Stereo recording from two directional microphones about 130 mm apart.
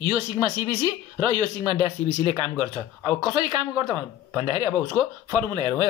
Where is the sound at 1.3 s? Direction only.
35° right (ahead or behind).